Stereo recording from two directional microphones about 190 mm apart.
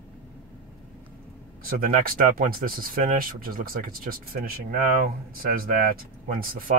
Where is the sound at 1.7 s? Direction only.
50° right (ahead or behind).